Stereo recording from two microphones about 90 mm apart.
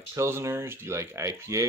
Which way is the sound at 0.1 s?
30° right (ahead or behind).